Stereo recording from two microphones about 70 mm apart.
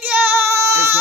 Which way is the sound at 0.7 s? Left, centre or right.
Right.